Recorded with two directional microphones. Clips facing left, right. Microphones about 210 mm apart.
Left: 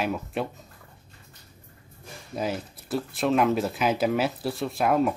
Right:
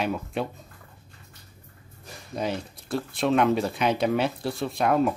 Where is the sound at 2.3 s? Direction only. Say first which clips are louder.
Even; 5° left (ahead or behind).